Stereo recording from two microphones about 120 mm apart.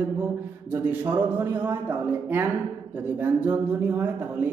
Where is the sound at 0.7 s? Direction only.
15° right (ahead or behind).